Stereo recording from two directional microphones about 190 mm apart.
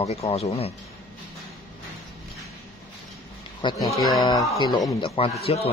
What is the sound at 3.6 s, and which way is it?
Speech, 20° left (ahead or behind).